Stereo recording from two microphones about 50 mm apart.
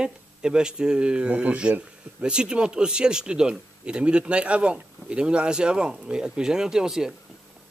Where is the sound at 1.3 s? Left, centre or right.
Right; by 7.2 s centre.